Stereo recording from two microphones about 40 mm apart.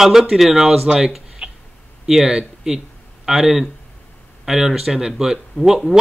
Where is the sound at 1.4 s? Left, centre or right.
Right.